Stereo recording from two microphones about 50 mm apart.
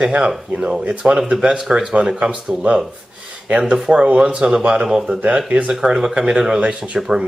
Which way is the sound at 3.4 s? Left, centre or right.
Right.